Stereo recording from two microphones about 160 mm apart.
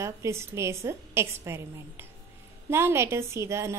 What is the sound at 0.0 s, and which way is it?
A woman's voice, 15° right (ahead or behind).